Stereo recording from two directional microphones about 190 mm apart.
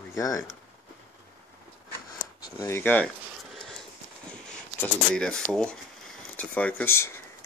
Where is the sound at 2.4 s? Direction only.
20° left (ahead or behind).